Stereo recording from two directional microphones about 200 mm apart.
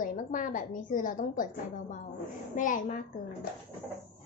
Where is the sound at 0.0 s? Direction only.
40° left (ahead or behind).